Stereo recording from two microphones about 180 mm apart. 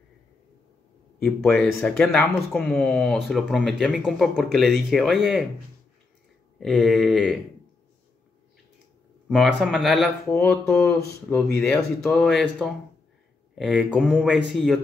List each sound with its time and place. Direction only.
1.2 s speech: 5° left (ahead or behind)
6.6 s speech: centre (ahead or behind)
9.3 s speech: centre (ahead or behind)
10.3 s mantra: 15° left (ahead or behind)
12.0 s speech: 5° left (ahead or behind)